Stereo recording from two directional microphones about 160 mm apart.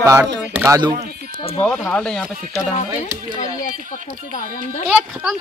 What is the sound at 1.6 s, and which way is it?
Speech, 10° left (ahead or behind).